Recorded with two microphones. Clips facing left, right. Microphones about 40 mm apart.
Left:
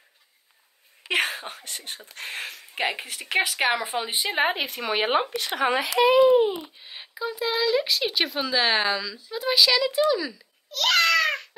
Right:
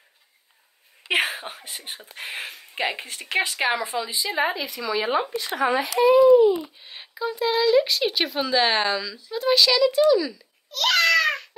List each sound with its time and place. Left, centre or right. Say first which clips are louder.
1.3 s speech: right 1 dB; centre
3.6 s speech: even; centre
3.9 s speech: even; left
6.8 s speech: right 2 dB; centre